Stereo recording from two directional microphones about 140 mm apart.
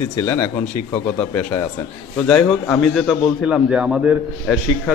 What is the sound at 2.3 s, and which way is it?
A man's voice, 5° left (ahead or behind).